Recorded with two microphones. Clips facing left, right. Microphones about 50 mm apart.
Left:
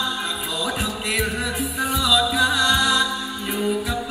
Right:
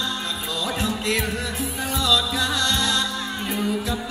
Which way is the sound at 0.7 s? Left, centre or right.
Centre.